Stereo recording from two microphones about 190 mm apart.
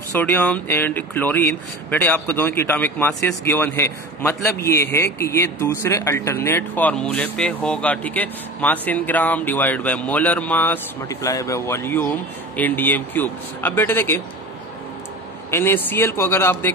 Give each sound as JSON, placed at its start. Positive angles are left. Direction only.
{"t": 0.1, "sound": "speech", "side_deg": 10}
{"t": 15.5, "sound": "speech", "side_deg": 10}